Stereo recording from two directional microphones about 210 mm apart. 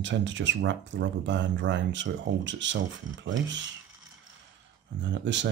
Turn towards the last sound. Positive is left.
turn(degrees=-60)  # may be behind; listen again after turning